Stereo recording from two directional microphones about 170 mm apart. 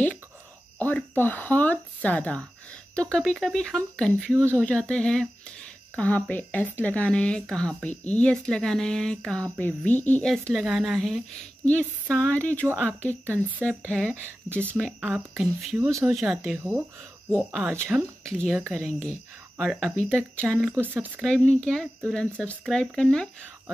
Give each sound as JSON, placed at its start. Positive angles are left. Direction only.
{"t": 0.7, "sound": "speech", "side_deg": 10}
{"t": 4.3, "sound": "speech", "side_deg": -15}
{"t": 4.6, "sound": "speech", "side_deg": 5}
{"t": 13.1, "sound": "speech", "side_deg": -15}
{"t": 13.7, "sound": "speech", "side_deg": 5}
{"t": 15.9, "sound": "speech", "side_deg": -15}
{"t": 18.2, "sound": "speech", "side_deg": 5}
{"t": 21.2, "sound": "speech", "side_deg": 5}